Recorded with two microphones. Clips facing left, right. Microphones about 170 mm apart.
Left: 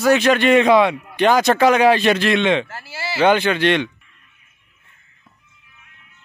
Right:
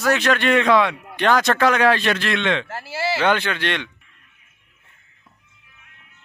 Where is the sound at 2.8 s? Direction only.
70° right (ahead or behind).